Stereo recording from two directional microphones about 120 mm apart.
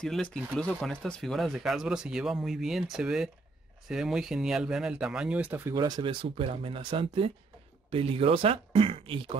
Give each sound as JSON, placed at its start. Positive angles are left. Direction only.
{"t": 0.0, "sound": "speech", "side_deg": 5}
{"t": 5.8, "sound": "speech", "side_deg": -35}
{"t": 6.2, "sound": "speech", "side_deg": -50}